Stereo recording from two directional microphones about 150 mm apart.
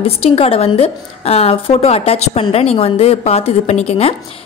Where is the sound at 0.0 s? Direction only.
40° left (ahead or behind).